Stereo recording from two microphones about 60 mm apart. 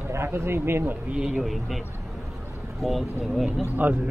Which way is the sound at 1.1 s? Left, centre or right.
Centre.